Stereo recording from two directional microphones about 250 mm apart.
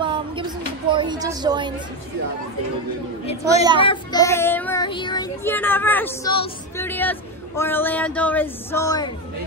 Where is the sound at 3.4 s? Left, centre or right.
Centre.